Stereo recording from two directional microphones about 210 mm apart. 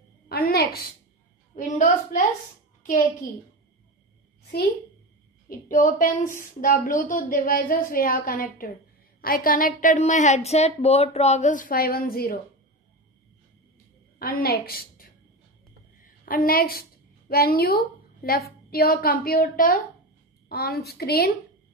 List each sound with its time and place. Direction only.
0.3 s a sound: 45° left (ahead or behind)
1.5 s a woman's voice: 35° left (ahead or behind)
5.5 s a woman's voice: 40° left (ahead or behind)
14.1 s a woman's voice: 45° left (ahead or behind)